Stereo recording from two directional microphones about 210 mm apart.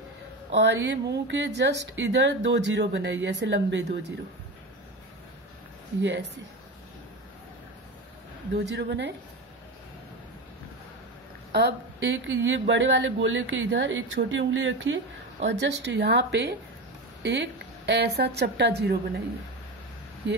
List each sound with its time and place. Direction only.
0.6 s speech: 55° right (ahead or behind)
6.0 s speech: 55° right (ahead or behind)
8.5 s speech: 55° right (ahead or behind)
11.5 s speech: 55° right (ahead or behind)